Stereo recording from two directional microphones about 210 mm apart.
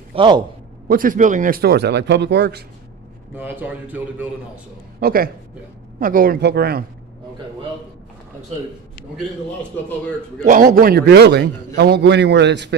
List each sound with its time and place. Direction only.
0.1 s a man's voice: 25° right (ahead or behind)
0.8 s a man's voice: 40° right (ahead or behind)
3.3 s a man's voice: 10° right (ahead or behind)
5.0 s a man's voice: 45° right (ahead or behind)
9.1 s a man's voice: 5° left (ahead or behind)
10.4 s a man's voice: 40° right (ahead or behind)